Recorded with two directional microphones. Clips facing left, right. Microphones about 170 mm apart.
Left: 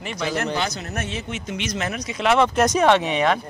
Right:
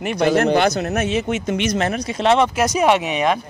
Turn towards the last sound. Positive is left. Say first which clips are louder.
# right 1 dB
turn(degrees=-15)  # may be behind; listen again after turning